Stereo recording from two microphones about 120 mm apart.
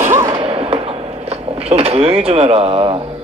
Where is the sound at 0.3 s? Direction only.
50° right (ahead or behind).